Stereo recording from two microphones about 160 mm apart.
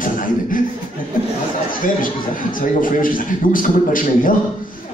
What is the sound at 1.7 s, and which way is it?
A man's voice, 60° left (ahead or behind).